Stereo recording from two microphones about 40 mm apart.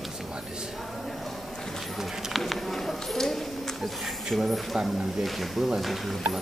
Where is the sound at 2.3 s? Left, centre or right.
Centre.